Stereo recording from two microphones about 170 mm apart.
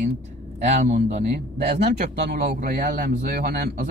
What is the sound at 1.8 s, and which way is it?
A man's voice, 70° right (ahead or behind).